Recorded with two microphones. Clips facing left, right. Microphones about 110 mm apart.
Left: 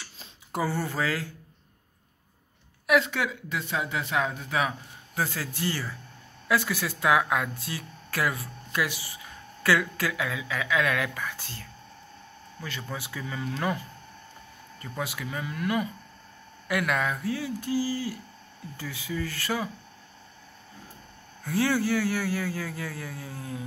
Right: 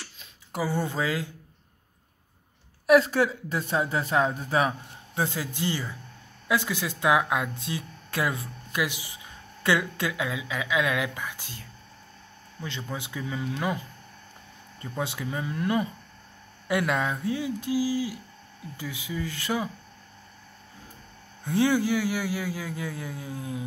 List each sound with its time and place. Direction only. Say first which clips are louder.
0.7 s speech: right 2 dB; 20° right (ahead or behind)
2.9 s speech: right 5 dB; 35° right (ahead or behind)
5.2 s speech: right 1 dB; 20° right (ahead or behind)
12.9 s speech: right 3 dB; 20° right (ahead or behind)
21.5 s speech: right 2 dB; 20° right (ahead or behind)